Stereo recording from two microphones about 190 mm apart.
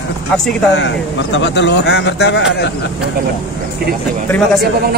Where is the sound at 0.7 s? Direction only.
70° left (ahead or behind).